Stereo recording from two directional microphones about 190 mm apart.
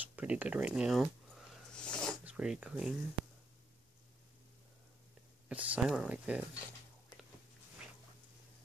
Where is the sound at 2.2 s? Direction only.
5° right (ahead or behind).